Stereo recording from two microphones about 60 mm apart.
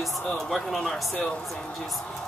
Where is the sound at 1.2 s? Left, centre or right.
Left.